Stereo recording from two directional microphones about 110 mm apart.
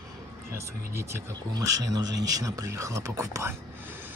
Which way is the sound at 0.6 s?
25° right (ahead or behind).